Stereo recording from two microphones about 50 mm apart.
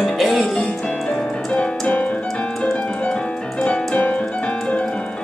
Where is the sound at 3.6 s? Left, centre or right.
Left.